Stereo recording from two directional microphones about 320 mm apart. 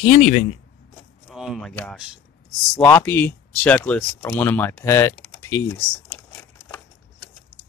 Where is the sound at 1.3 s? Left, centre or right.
Centre.